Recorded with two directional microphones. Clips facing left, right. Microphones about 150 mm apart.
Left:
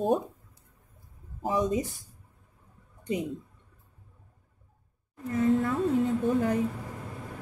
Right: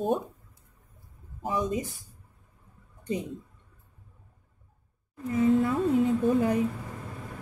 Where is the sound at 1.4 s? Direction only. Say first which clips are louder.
Left 2 dB; 30° left (ahead or behind).